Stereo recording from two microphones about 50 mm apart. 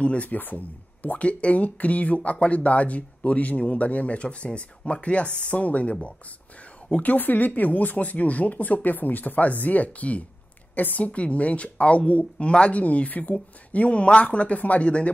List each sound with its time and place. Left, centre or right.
0.0 s speech: left
7.0 s a woman's voice: left
11.1 s speech: left